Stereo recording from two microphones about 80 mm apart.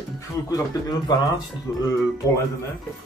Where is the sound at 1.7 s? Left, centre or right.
Left.